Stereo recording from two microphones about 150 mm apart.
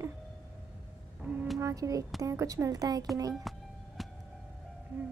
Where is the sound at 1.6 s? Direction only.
20° right (ahead or behind).